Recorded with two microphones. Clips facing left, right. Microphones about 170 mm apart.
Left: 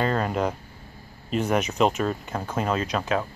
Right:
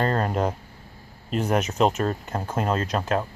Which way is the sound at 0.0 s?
40° right (ahead or behind).